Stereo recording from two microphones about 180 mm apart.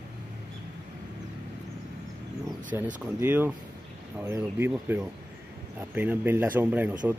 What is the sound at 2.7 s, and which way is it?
A man's voice, 10° right (ahead or behind).